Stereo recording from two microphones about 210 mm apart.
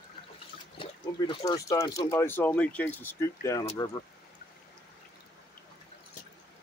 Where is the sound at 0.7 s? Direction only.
25° left (ahead or behind).